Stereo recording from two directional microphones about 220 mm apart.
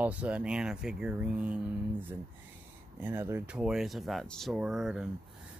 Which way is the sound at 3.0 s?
10° right (ahead or behind).